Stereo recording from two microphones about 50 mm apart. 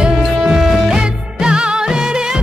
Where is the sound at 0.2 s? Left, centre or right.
Centre.